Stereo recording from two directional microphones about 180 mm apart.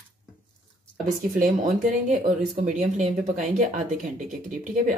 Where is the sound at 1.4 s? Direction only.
45° right (ahead or behind).